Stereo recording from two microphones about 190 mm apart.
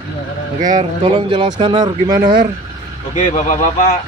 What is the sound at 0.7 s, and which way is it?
Speech, 25° right (ahead or behind).